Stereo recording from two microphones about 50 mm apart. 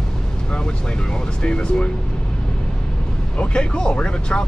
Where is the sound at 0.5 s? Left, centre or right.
Centre.